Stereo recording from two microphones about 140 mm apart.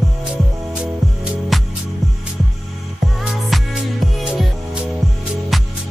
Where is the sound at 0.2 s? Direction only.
5° right (ahead or behind).